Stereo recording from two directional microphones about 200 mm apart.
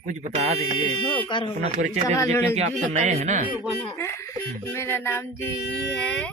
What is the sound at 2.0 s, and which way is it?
Speech, 15° left (ahead or behind).